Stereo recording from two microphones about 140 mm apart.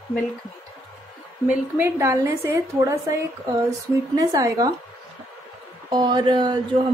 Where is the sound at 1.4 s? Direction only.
15° right (ahead or behind).